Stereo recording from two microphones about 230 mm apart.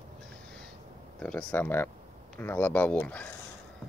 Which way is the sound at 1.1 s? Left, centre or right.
Centre.